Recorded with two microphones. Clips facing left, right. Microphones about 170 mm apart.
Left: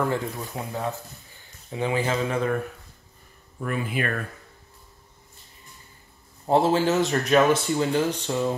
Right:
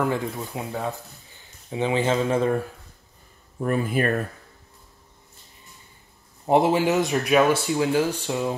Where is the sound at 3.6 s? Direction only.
40° right (ahead or behind).